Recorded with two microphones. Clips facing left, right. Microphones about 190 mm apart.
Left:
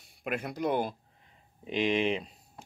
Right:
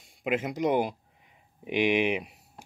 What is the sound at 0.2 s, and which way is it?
Speech, 20° right (ahead or behind).